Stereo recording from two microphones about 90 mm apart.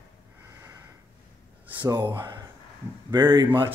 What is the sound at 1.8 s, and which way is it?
Speech, 60° right (ahead or behind).